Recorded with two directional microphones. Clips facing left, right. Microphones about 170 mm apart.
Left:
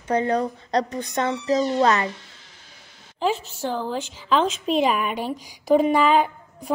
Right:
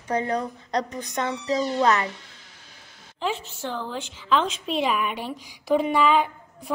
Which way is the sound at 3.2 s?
40° left (ahead or behind).